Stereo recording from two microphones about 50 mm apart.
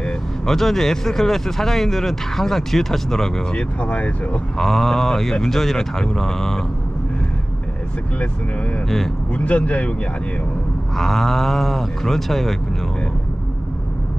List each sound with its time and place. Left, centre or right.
0.0 s speech: centre
3.5 s speech: left
4.6 s speech: centre
8.8 s speech: centre
9.3 s speech: left
11.0 s speech: centre